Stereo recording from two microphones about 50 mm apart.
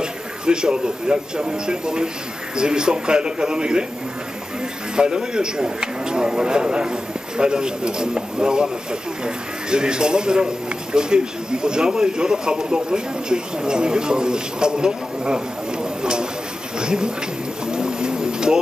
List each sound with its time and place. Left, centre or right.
0.0 s a man's voice: centre
4.9 s a man's voice: centre
17.6 s bird: centre